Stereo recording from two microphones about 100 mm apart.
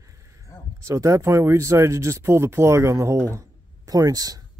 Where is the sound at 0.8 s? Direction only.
30° right (ahead or behind).